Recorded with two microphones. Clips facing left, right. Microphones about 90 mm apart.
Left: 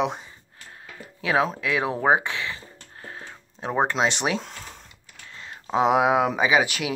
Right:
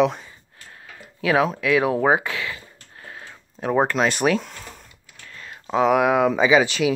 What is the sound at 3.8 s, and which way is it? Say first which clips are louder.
Speech: right 3 dB; 25° left (ahead or behind).